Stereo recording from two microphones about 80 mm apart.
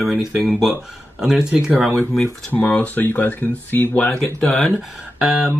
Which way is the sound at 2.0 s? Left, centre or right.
Centre.